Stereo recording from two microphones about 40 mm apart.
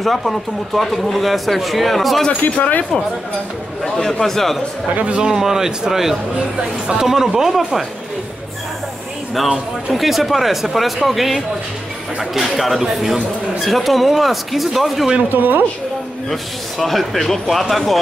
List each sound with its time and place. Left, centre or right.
0.0 s speech: centre
2.4 s speech: left
3.8 s a man's voice: centre
5.2 s a man's voice: centre
9.9 s speech: centre
15.2 s a woman's voice: right
16.3 s speech: centre